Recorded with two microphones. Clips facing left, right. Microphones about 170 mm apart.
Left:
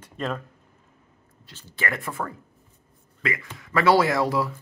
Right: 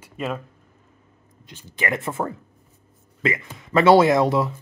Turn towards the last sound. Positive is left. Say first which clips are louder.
# right 5 dB
turn(degrees=-20)  # may be behind; listen again after turning